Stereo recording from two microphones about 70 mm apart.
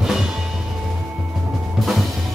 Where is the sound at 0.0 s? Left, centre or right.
Centre.